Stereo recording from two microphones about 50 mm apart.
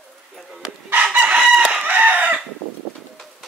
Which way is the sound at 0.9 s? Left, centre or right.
Right.